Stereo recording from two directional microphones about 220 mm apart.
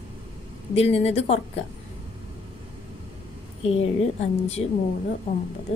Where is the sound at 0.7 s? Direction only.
30° left (ahead or behind).